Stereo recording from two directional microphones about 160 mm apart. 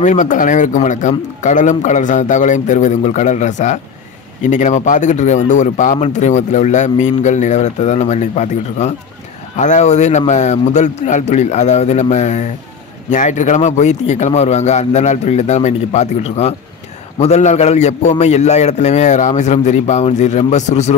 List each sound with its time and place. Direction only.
0.0 s a man's voice: 50° left (ahead or behind)